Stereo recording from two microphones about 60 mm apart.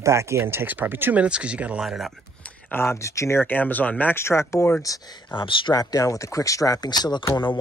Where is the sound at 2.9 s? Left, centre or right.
Left.